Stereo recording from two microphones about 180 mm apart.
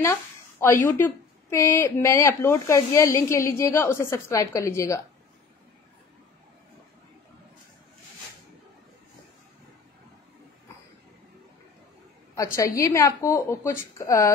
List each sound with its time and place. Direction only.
0.0 s a woman's voice: 15° left (ahead or behind)
12.4 s a woman's voice: 15° left (ahead or behind)